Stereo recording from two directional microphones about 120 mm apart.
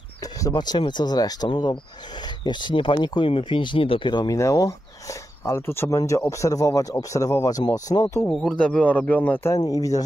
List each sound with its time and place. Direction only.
0.2 s speech: 35° left (ahead or behind)
8.3 s speech: centre (ahead or behind)
9.6 s speech: 30° left (ahead or behind)